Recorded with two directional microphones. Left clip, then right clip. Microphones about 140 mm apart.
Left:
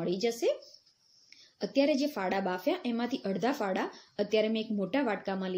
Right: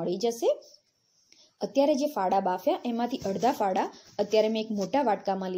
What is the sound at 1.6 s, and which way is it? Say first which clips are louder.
A woman's voice: right 4 dB; 25° right (ahead or behind).